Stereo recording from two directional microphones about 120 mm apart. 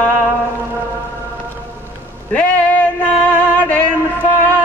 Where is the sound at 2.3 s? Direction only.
10° left (ahead or behind).